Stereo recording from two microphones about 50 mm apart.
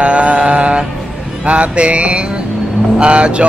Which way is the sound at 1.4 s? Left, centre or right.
Right.